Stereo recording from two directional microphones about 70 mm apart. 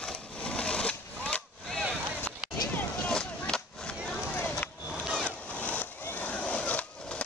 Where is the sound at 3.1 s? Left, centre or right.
Centre.